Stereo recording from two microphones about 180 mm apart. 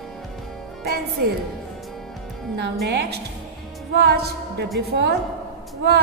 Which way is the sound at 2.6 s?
65° right (ahead or behind).